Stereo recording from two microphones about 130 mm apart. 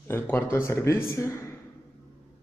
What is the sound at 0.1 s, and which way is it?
A man's voice, 15° left (ahead or behind).